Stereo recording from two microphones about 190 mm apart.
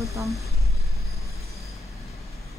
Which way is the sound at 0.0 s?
15° right (ahead or behind).